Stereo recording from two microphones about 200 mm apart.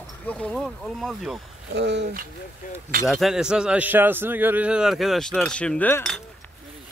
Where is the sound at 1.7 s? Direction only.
60° right (ahead or behind).